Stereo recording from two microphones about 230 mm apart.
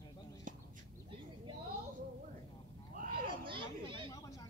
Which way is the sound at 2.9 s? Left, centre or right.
Right.